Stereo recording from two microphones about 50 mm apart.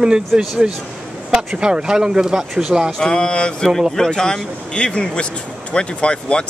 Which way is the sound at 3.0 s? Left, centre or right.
Centre.